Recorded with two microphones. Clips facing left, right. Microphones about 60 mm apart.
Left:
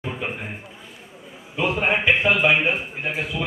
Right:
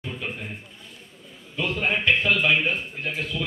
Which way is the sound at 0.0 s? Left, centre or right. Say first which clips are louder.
Left 4 dB; left.